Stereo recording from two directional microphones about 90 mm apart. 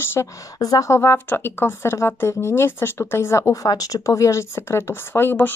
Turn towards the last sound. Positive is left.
turn(degrees=25)  # may be behind; listen again after turning